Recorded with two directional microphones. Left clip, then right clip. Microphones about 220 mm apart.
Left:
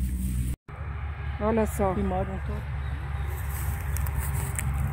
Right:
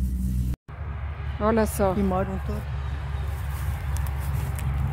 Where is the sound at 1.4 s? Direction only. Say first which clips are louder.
Right 3 dB; 5° right (ahead or behind).